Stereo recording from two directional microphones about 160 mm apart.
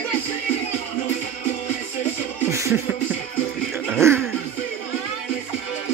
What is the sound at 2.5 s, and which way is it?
Music, 20° right (ahead or behind).